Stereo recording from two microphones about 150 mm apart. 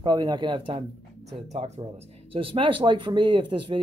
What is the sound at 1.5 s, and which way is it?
Speech, 45° right (ahead or behind).